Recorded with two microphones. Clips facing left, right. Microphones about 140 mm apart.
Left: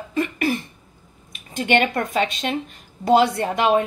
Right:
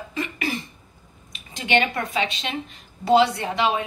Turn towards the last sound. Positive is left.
turn(degrees=50)  # may be behind; listen again after turning